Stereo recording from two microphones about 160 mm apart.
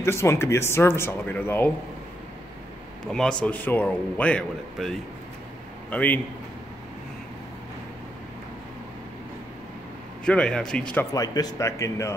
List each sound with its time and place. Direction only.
0.0 s a man's voice: 15° left (ahead or behind)
3.1 s a man's voice: 5° left (ahead or behind)
10.2 s speech: 5° left (ahead or behind)
11.1 s speech: 25° left (ahead or behind)